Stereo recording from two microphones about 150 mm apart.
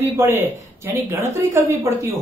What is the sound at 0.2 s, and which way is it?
Speech, 15° right (ahead or behind).